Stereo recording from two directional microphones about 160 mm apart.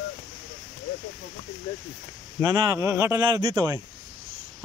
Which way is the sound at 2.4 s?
20° right (ahead or behind).